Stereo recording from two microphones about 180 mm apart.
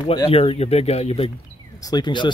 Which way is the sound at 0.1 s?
30° left (ahead or behind).